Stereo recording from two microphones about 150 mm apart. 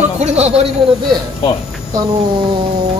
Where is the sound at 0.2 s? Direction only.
50° right (ahead or behind).